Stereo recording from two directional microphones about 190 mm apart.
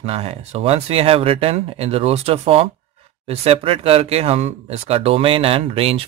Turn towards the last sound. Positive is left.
turn(degrees=-30)  # may be behind; listen again after turning